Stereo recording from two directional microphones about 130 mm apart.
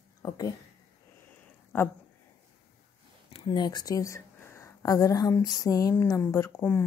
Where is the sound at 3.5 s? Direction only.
30° left (ahead or behind).